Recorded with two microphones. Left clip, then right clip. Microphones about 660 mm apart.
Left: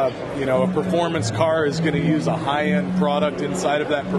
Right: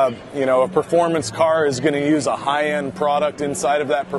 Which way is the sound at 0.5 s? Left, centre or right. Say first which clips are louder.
Right 4 dB; right.